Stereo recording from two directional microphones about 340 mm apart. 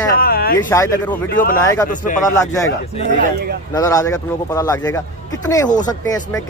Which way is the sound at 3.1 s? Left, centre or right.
Right.